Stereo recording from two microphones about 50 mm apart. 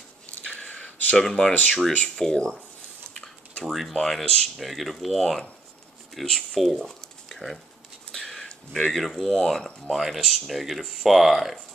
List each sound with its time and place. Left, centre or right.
0.5 s a sound: left
1.5 s speech: left
3.6 s speech: centre
8.1 s a sound: centre
9.3 s speech: centre
9.8 s speech: centre